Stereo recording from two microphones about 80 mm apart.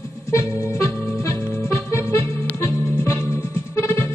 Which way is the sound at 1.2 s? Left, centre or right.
Left.